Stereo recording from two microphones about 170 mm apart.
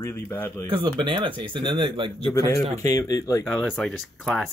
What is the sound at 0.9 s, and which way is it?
Speech, 25° right (ahead or behind).